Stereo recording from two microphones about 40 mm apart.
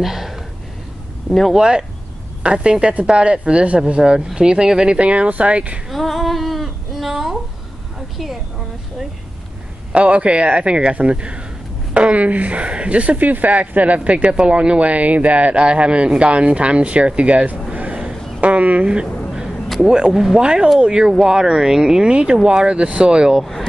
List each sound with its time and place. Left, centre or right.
0.0 s a sound: centre
1.5 s speech: centre
4.9 s speech: right
5.9 s a sound: centre
9.9 s speech: right
20.1 s speech: centre
20.3 s speech: centre